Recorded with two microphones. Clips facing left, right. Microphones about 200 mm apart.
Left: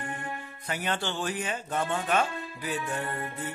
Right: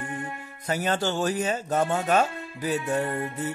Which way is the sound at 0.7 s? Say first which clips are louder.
Right 6 dB; 40° right (ahead or behind).